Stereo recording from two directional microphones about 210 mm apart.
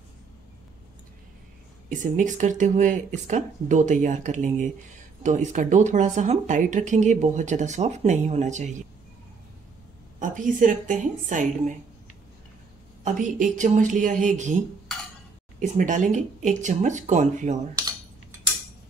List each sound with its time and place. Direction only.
1.9 s speech: 35° right (ahead or behind)
10.1 s speech: 40° right (ahead or behind)
13.0 s speech: 40° right (ahead or behind)
15.6 s speech: 35° right (ahead or behind)